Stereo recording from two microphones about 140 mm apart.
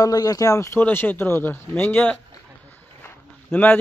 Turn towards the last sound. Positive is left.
turn(degrees=15)  # may be behind; listen again after turning